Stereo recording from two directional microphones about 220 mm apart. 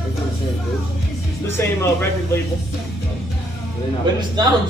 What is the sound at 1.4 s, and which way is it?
Speech, 10° left (ahead or behind).